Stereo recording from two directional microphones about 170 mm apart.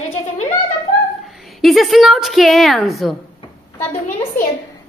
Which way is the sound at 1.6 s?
Centre (ahead or behind).